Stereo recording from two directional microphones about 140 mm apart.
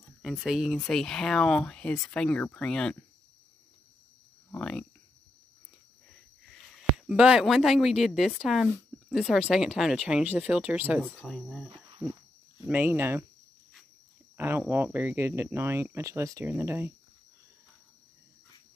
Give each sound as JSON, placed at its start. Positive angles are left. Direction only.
{"t": 0.2, "sound": "speech", "side_deg": 0}
{"t": 4.5, "sound": "a sound", "side_deg": 5}
{"t": 6.8, "sound": "speech", "side_deg": -5}
{"t": 11.1, "sound": "speech", "side_deg": 5}
{"t": 14.3, "sound": "cricket", "side_deg": -15}
{"t": 14.6, "sound": "speech", "side_deg": -15}